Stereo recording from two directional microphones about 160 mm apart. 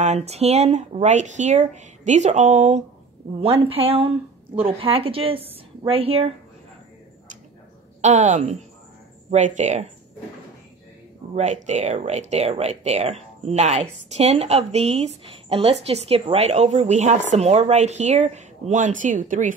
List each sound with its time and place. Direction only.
0.0 s speech: 45° right (ahead or behind)
3.3 s a woman's voice: 35° right (ahead or behind)
8.0 s speech: 50° right (ahead or behind)
11.3 s speech: 45° right (ahead or behind)